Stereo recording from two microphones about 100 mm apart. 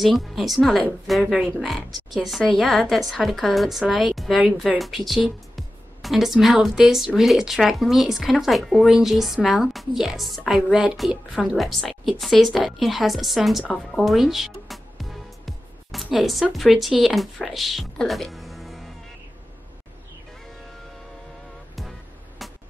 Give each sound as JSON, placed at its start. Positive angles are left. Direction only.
{"t": 0.0, "sound": "a woman's voice", "side_deg": 0}
{"t": 1.2, "sound": "speech", "side_deg": -10}
{"t": 1.6, "sound": "a woman's voice", "side_deg": 0}
{"t": 13.9, "sound": "music", "side_deg": 0}
{"t": 16.5, "sound": "speech", "side_deg": 0}
{"t": 22.4, "sound": "music", "side_deg": 0}